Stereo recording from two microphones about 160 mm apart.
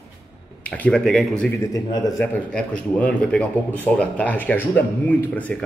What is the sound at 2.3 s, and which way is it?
Speech, 10° left (ahead or behind).